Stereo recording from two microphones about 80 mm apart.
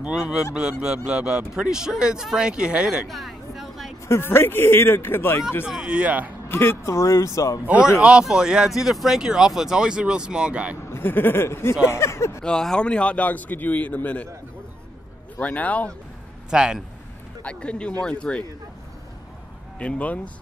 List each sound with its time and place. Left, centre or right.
0.8 s speech: centre
4.1 s speech: left
5.7 s speech: centre
6.5 s speech: left
7.6 s speech: centre
10.9 s speech: left
12.4 s a man's voice: centre
15.3 s a man's voice: centre
16.4 s a man's voice: centre
17.4 s a man's voice: centre
19.8 s a man's voice: centre